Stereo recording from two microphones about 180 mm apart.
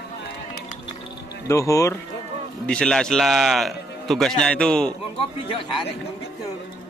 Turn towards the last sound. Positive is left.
turn(degrees=30)  # may be behind; listen again after turning